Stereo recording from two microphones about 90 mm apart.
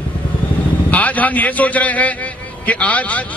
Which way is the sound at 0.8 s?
15° left (ahead or behind).